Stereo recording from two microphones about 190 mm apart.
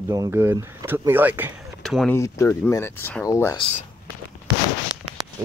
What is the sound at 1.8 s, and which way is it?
Speech, centre (ahead or behind).